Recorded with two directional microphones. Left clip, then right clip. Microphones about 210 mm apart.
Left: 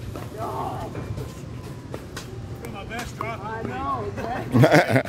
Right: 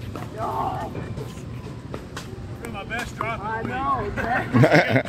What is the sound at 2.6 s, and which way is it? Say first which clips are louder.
Speech: right 4 dB; 25° left (ahead or behind).